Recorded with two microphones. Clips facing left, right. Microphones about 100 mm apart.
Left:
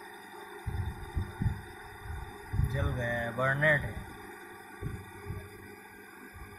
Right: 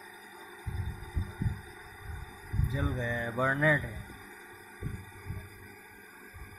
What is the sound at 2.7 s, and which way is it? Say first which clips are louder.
Speech: even; centre (ahead or behind).